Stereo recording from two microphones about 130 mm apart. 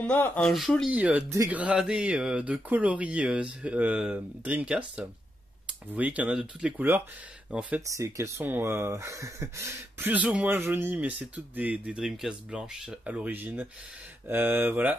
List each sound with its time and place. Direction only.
0.0 s speech: 10° left (ahead or behind)
0.8 s speech: 10° right (ahead or behind)
7.9 s speech: 20° right (ahead or behind)